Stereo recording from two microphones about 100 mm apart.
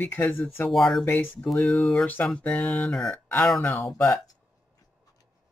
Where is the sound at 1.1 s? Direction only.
15° left (ahead or behind).